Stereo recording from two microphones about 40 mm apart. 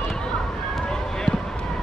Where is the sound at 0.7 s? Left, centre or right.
Centre.